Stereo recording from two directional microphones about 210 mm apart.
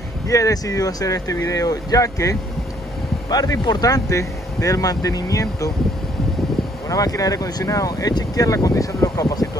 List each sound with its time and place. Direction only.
0.3 s speech: 15° left (ahead or behind)
6.9 s speech: 15° left (ahead or behind)